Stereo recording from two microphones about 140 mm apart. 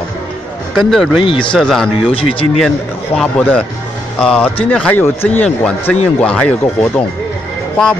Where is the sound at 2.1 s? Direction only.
40° left (ahead or behind).